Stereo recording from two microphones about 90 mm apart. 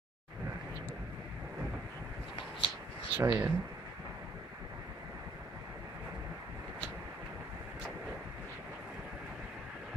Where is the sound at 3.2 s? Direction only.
30° right (ahead or behind).